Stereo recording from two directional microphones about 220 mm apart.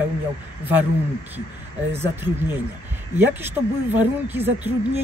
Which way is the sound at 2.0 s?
10° right (ahead or behind).